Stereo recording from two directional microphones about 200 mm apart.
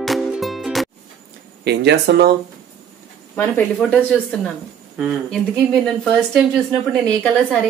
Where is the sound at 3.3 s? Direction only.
10° left (ahead or behind).